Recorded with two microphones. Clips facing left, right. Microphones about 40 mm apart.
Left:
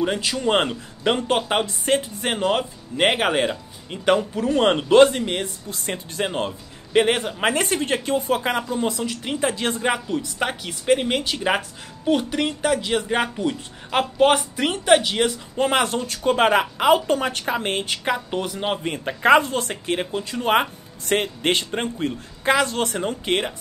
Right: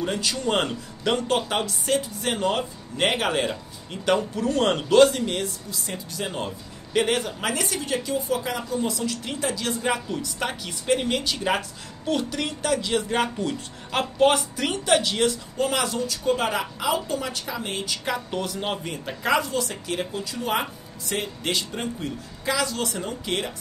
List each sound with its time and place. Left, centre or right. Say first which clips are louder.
0.0 s speech: left 4 dB; left
5.7 s speech: left 4 dB; left
10.0 s speech: left 4 dB; centre
15.5 s speech: left 4 dB; left
18.0 s speech: left 2 dB; left
18.9 s speech: left 10 dB; left